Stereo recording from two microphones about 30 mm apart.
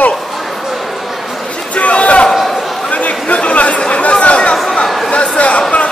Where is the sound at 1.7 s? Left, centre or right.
Left.